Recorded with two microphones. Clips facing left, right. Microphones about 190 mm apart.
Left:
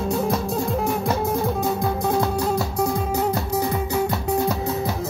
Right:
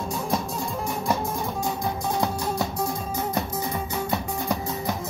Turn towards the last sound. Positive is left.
turn(degrees=70)  # may be behind; listen again after turning